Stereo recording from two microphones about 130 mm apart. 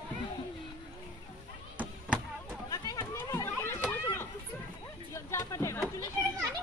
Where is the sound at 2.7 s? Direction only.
30° left (ahead or behind).